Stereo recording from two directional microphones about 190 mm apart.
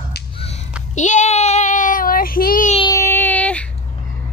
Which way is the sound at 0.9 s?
40° left (ahead or behind).